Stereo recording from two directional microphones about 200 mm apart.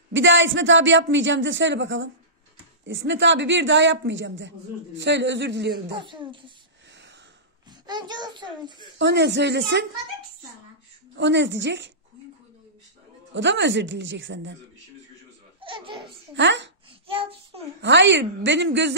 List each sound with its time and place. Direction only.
0.1 s speech: 70° right (ahead or behind)
5.9 s a child's voice: 25° right (ahead or behind)
7.8 s a child's voice: 20° right (ahead or behind)
8.9 s speech: 60° right (ahead or behind)
11.1 s speech: 60° right (ahead or behind)
13.3 s speech: 65° right (ahead or behind)
15.6 s laughter: 25° right (ahead or behind)
16.3 s speech: 65° right (ahead or behind)
17.1 s a child's voice: 30° right (ahead or behind)
17.8 s speech: 60° right (ahead or behind)